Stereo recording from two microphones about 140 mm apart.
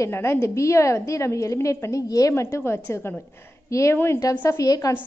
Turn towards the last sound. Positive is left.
turn(degrees=25)  # may be behind; listen again after turning